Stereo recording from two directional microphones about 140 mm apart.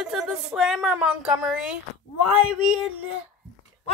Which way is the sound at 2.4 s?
5° right (ahead or behind).